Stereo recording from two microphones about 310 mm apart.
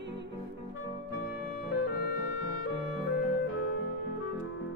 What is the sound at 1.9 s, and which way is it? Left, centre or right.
Music, left.